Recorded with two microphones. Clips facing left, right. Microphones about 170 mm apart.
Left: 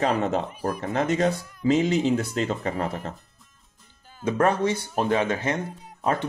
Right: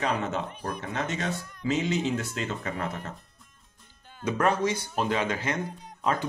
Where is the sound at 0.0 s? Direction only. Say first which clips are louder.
Left 5 dB; 35° left (ahead or behind).